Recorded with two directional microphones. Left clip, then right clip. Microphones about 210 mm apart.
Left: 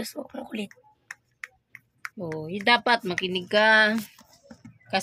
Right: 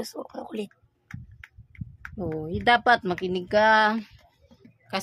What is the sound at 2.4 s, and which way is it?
Speech, 30° right (ahead or behind).